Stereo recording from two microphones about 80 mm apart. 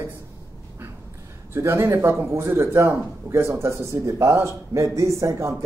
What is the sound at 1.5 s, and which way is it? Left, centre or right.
A man's voice, right.